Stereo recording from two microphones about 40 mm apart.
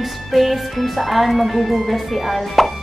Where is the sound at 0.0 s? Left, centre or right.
Centre.